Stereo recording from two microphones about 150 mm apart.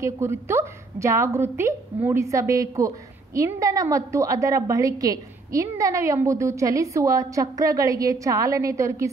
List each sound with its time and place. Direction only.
0.0 s a woman's voice: 15° right (ahead or behind)